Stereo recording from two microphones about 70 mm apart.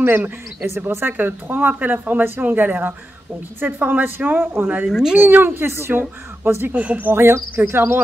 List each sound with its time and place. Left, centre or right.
0.0 s speech: right
4.8 s speech: centre
5.1 s speech: right
7.5 s speech: right